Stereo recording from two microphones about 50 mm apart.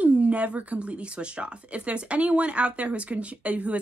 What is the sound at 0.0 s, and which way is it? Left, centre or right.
A woman's voice, right.